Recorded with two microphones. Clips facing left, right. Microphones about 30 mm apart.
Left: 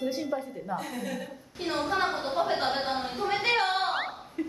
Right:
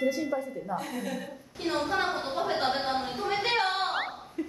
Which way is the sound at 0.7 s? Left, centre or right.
Centre.